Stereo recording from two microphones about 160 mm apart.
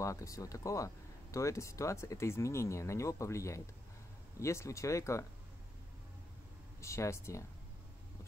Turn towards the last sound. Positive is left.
turn(degrees=20)  # may be behind; listen again after turning